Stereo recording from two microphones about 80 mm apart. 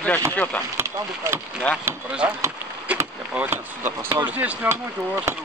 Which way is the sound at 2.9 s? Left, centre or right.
Centre.